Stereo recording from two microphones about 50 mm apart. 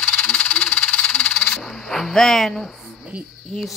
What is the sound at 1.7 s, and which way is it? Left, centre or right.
A child's voice, centre.